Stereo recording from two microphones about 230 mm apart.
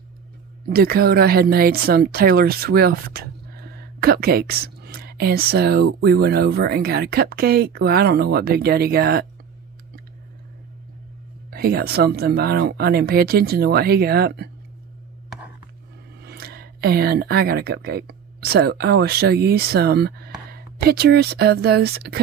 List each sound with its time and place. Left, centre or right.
0.7 s speech: right
11.5 s speech: right
16.2 s speech: right